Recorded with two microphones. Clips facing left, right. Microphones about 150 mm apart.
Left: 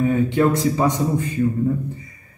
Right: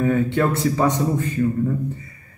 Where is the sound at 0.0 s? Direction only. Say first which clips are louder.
Left 1 dB; 15° left (ahead or behind).